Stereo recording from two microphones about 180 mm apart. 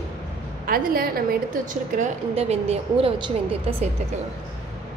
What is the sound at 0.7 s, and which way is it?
Speech, 55° right (ahead or behind).